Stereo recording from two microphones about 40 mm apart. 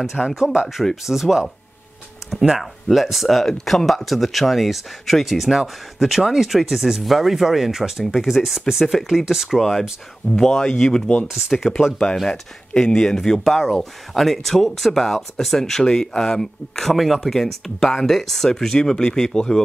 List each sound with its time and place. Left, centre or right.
0.0 s speech: centre
0.4 s speech: centre
8.3 s speech: centre
9.5 s speech: centre
10.3 s speech: centre
11.2 s speech: centre
12.3 s speech: centre